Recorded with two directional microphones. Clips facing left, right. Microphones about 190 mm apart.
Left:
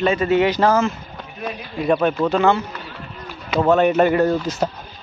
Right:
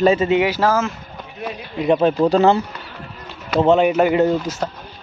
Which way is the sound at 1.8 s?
25° right (ahead or behind).